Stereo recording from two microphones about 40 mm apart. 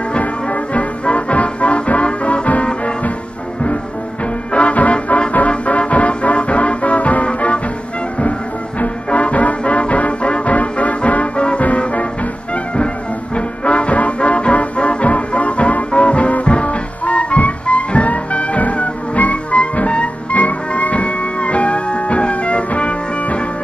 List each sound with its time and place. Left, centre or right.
0.2 s music: left
4.5 s music: left